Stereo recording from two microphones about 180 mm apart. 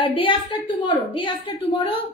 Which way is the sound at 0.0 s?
30° left (ahead or behind).